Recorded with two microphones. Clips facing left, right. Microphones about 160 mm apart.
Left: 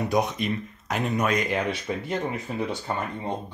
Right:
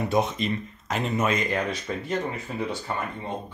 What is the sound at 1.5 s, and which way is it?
Speech, 10° left (ahead or behind).